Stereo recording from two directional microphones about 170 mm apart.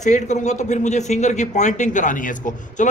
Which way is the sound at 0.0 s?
45° left (ahead or behind).